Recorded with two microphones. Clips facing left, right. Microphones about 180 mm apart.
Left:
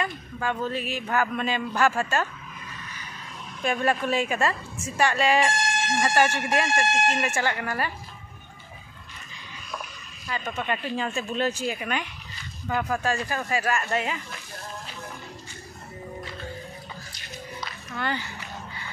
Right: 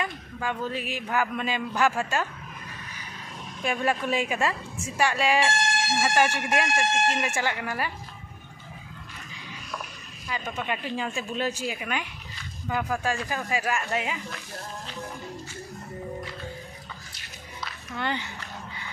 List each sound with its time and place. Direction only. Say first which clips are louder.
0.0 s a man's voice: left 2 dB; 10° right (ahead or behind)
3.6 s a man's voice: left 2 dB; 10° right (ahead or behind)
10.2 s a man's voice: left 2 dB; 5° right (ahead or behind)
17.9 s speech: even; 20° right (ahead or behind)